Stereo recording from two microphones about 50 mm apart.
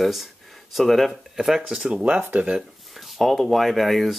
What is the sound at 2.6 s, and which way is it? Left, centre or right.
Speech, centre.